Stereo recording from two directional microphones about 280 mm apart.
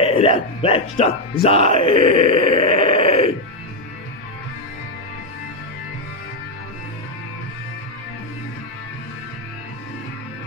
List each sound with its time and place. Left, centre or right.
0.0 s speech: centre